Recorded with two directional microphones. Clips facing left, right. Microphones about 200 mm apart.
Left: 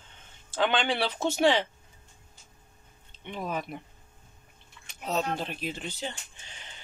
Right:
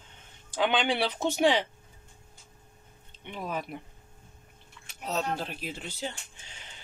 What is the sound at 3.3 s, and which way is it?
Speech, 5° right (ahead or behind).